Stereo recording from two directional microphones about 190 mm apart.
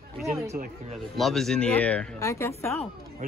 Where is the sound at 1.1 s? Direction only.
Centre (ahead or behind).